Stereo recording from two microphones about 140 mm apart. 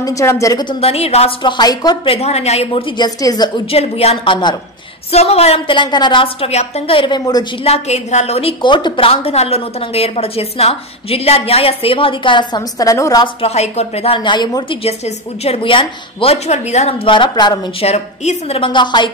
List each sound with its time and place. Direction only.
0.0 s a woman's voice: 20° left (ahead or behind)
0.7 s a woman's voice: 45° left (ahead or behind)
1.6 s a woman's voice: 30° left (ahead or behind)
2.0 s a woman's voice: 45° left (ahead or behind)
3.0 s a woman's voice: 30° left (ahead or behind)
3.7 s a woman's voice: 45° left (ahead or behind)
5.1 s a woman's voice: 45° left (ahead or behind); by 7.4 s 30° left (ahead or behind)
7.6 s a woman's voice: 50° left (ahead or behind); by 13.3 s 25° left (ahead or behind)
13.4 s a woman's voice: 50° left (ahead or behind); by 14.8 s 30° left (ahead or behind)
14.8 s a woman's voice: 45° left (ahead or behind)
17.0 s a woman's voice: 35° left (ahead or behind)
17.8 s a woman's voice: 55° left (ahead or behind)
18.6 s a woman's voice: 35° left (ahead or behind)